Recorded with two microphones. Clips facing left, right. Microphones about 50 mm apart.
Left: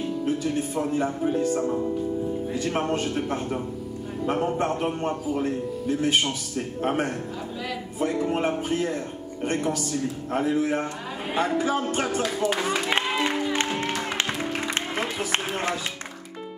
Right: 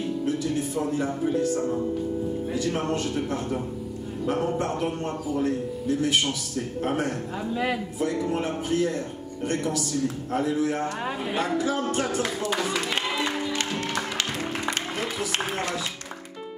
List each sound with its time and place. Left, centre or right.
0.2 s a man's voice: left
12.4 s music: left